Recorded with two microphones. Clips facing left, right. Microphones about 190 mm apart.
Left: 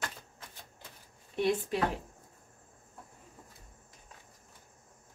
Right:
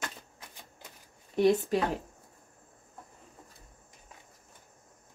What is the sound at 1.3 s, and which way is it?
Speech, 45° right (ahead or behind).